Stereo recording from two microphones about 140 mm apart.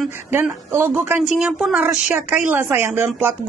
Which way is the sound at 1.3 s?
5° right (ahead or behind).